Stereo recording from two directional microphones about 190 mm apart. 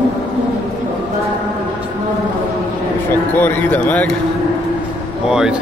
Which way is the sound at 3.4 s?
10° left (ahead or behind).